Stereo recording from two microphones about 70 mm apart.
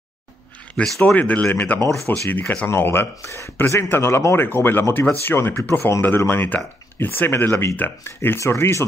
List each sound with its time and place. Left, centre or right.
0.8 s speech: centre; by 2.4 s left
2.4 s speech: centre
2.7 s speech: left